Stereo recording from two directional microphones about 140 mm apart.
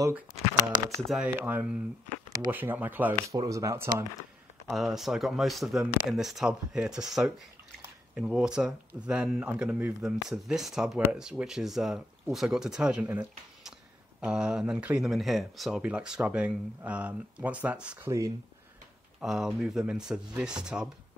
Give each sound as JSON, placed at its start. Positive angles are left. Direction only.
{"t": 0.9, "sound": "speech", "side_deg": 0}
{"t": 1.2, "sound": "speech", "side_deg": -15}
{"t": 3.3, "sound": "speech", "side_deg": -25}
{"t": 4.6, "sound": "speech", "side_deg": 0}
{"t": 19.1, "sound": "speech", "side_deg": -5}